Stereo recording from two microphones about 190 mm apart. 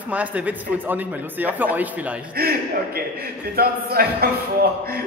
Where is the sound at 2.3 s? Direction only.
55° right (ahead or behind).